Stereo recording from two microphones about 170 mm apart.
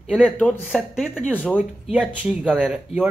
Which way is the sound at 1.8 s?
5° right (ahead or behind).